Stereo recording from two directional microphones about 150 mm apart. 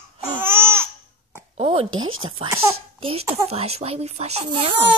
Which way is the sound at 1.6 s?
40° right (ahead or behind).